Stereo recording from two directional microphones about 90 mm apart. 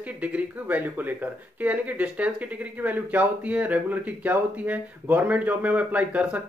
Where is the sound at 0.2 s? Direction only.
15° right (ahead or behind).